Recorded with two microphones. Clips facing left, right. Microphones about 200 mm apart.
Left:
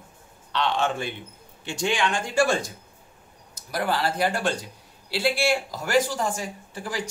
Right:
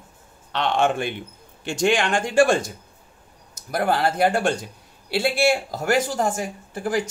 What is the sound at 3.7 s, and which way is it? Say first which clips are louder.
Speech: right 4 dB; 50° right (ahead or behind).